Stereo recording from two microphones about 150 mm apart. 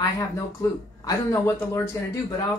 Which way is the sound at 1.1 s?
20° left (ahead or behind).